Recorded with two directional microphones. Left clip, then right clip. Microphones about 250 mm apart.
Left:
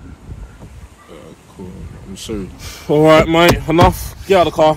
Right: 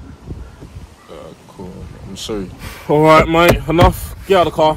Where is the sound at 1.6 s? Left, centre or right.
Centre.